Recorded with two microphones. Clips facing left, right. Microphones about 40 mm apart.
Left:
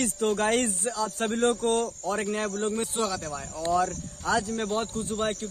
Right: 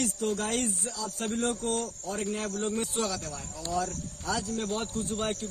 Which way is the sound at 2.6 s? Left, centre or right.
Centre.